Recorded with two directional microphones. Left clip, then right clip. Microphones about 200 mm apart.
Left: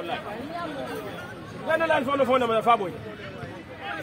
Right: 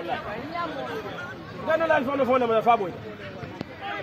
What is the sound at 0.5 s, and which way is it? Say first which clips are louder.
Chatter: right 3 dB; 60° left (ahead or behind).